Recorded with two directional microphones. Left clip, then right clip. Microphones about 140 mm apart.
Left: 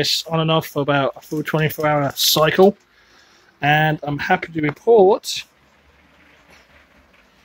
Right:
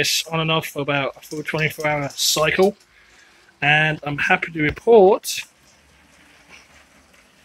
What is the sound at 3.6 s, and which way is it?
Speech, 30° left (ahead or behind).